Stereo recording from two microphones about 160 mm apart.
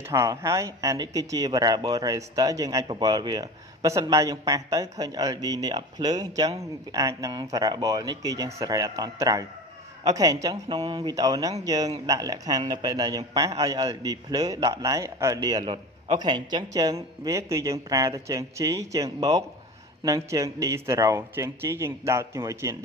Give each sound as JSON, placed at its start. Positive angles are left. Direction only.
{"t": 0.1, "sound": "speech", "side_deg": -20}